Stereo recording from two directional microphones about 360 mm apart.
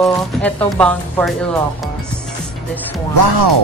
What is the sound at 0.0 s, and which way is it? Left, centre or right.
Speech, centre.